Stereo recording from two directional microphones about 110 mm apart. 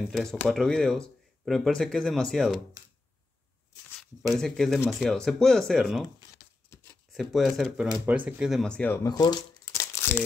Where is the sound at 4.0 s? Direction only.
5° left (ahead or behind).